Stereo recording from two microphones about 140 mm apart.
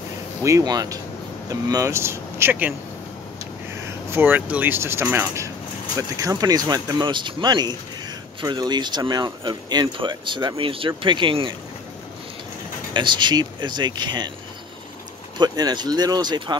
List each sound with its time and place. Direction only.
0.4 s speech: 20° right (ahead or behind)
3.7 s speech: 20° right (ahead or behind); by 11.5 s 35° right (ahead or behind)
12.9 s speech: 35° right (ahead or behind)
15.3 s speech: 30° right (ahead or behind)